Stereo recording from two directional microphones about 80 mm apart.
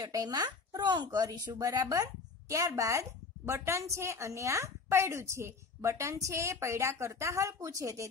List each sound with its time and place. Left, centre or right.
0.0 s a woman's voice: right